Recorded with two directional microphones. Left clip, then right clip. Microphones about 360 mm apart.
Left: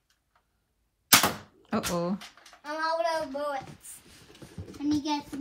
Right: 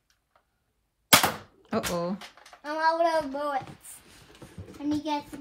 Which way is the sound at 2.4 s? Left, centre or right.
Right.